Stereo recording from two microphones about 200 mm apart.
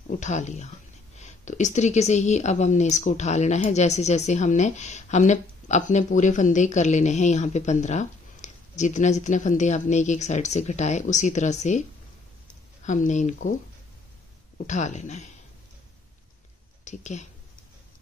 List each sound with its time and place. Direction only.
0.1 s a woman's voice: 35° left (ahead or behind)
12.8 s a woman's voice: 35° left (ahead or behind)
14.7 s a woman's voice: 35° left (ahead or behind)
16.8 s a woman's voice: 35° left (ahead or behind)